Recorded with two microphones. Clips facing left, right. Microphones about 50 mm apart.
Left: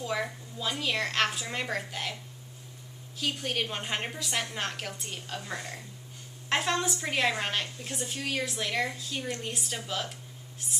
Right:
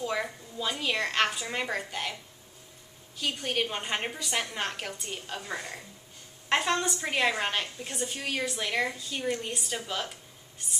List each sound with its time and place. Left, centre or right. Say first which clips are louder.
0.0 s a woman's voice: right 1 dB; centre
3.2 s a woman's voice: right 1 dB; centre